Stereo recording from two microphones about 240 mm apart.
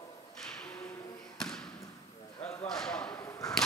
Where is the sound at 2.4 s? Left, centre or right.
Centre.